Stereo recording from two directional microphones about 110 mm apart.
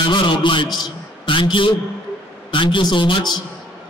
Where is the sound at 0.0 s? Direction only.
45° left (ahead or behind).